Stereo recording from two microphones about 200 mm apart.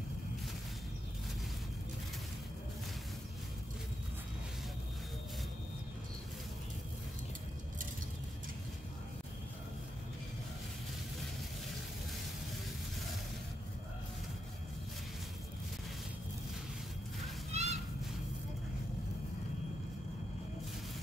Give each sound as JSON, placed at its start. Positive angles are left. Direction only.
{"t": 17.5, "sound": "children playing", "side_deg": -35}